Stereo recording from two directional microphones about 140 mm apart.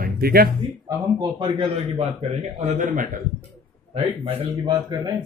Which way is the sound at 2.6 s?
65° right (ahead or behind).